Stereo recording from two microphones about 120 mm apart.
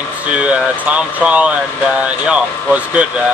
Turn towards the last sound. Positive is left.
turn(degrees=-10)  # may be behind; listen again after turning